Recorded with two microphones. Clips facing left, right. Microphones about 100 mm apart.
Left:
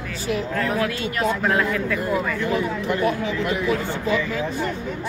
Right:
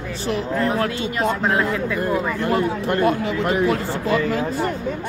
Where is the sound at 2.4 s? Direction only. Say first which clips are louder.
Right 3 dB; 50° right (ahead or behind).